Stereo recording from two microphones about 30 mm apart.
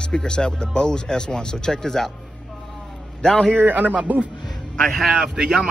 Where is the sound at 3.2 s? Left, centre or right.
Left.